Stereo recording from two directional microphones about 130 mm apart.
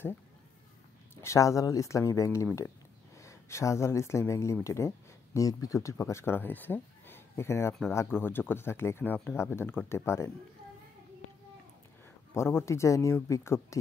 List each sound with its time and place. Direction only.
1.1 s speech: 20° left (ahead or behind)
12.4 s speech: 20° left (ahead or behind)